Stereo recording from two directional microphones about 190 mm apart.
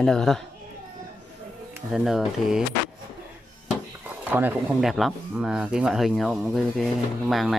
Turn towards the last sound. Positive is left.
turn(degrees=0)  # may be behind; listen again after turning